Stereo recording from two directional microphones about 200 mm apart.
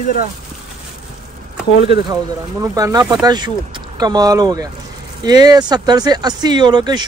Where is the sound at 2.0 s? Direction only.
20° right (ahead or behind).